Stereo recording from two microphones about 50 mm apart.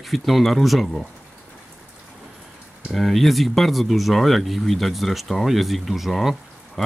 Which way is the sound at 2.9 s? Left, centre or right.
Centre.